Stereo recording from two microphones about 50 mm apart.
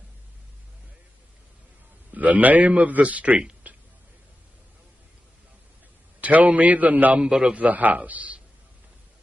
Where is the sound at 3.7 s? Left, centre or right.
Right.